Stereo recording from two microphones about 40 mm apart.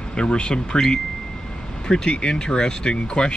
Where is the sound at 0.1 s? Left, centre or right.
Left.